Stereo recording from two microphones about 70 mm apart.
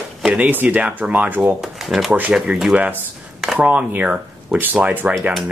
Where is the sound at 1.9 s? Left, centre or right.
Centre.